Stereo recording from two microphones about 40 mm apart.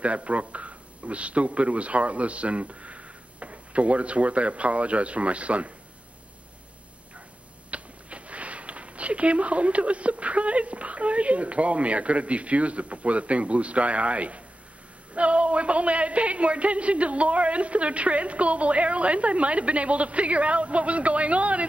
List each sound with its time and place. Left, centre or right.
0.0 s speech: right
7.7 s a man's voice: right